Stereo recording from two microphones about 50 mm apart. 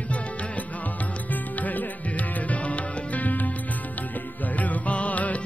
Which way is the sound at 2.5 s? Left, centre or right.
Left.